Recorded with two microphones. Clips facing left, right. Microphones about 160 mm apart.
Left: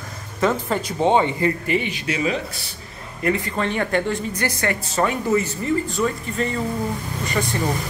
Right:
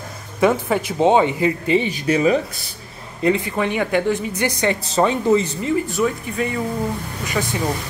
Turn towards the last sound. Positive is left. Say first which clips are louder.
# even
turn(degrees=0)  # may be behind; listen again after turning